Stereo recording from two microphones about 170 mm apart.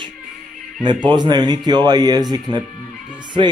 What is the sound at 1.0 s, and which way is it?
Speech, 25° right (ahead or behind).